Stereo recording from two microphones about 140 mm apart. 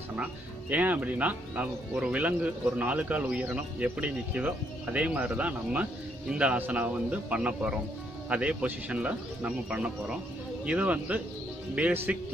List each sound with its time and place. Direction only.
0.2 s speech: 10° right (ahead or behind)